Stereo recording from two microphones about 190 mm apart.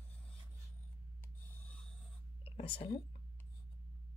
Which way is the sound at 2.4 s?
30° left (ahead or behind).